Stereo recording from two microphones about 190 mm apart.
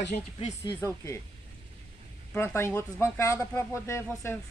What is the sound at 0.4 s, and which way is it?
Speech, 35° left (ahead or behind).